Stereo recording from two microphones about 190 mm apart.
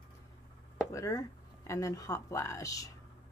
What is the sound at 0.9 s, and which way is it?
Speech, 15° left (ahead or behind).